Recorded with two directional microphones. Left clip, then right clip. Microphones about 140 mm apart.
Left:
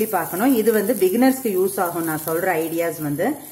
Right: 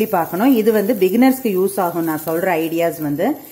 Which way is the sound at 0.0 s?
35° right (ahead or behind).